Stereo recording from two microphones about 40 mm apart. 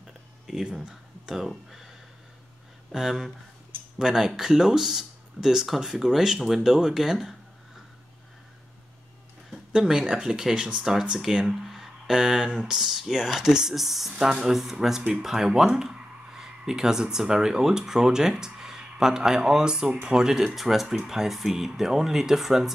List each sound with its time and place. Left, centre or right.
0.0 s a sound: centre
0.8 s speech: centre
2.9 s speech: centre
9.7 s speech: centre
10.8 s speech: centre
20.3 s speech: centre